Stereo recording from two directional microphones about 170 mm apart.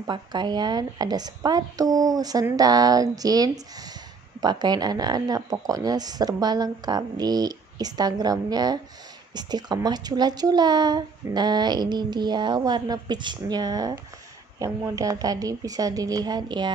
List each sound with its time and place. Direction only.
0.0 s speech: 25° right (ahead or behind)